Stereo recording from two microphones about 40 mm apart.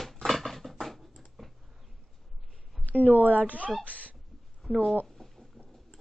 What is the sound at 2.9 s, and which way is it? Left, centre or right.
Speech, right.